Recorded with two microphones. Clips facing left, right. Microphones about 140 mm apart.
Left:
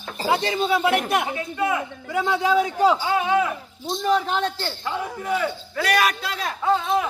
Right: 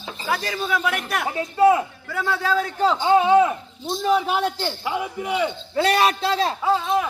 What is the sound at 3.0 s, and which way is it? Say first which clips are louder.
Speech: right 6 dB; 25° right (ahead or behind).